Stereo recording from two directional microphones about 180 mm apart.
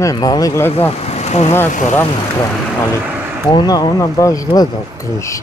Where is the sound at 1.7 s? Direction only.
45° left (ahead or behind).